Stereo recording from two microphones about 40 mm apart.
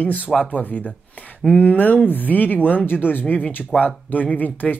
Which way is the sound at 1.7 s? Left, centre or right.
Left.